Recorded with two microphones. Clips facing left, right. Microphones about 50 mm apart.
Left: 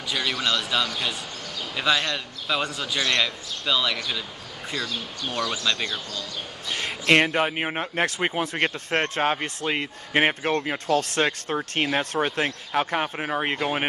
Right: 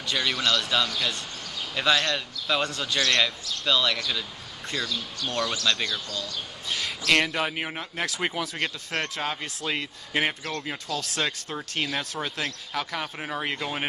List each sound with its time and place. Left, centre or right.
0.1 s speech: centre
5.5 s speech: centre
6.7 s speech: left
10.9 s speech: left
13.2 s speech: left